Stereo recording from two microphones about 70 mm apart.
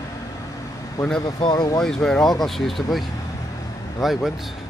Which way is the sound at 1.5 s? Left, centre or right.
Left.